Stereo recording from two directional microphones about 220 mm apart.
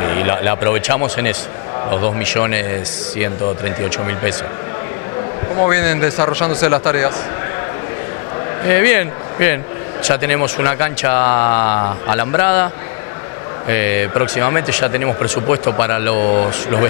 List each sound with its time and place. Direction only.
0.0 s speech: 20° left (ahead or behind)
5.6 s speech: 15° left (ahead or behind)
8.6 s speech: 15° left (ahead or behind)
13.7 s speech: 15° left (ahead or behind)
16.2 s speech: 30° left (ahead or behind)